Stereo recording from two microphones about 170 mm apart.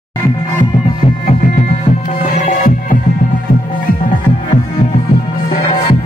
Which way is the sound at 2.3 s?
45° left (ahead or behind).